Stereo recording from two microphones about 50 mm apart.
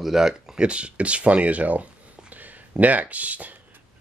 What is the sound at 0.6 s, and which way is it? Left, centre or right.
Speech, right.